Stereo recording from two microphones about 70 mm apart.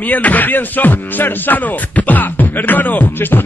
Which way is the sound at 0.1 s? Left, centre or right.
Left.